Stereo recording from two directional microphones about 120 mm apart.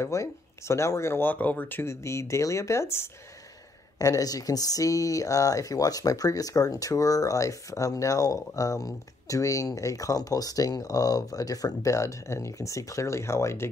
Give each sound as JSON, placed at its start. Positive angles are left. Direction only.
{"t": 0.0, "sound": "speech", "side_deg": 25}